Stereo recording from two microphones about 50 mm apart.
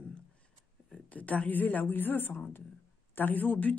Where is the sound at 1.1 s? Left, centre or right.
Left.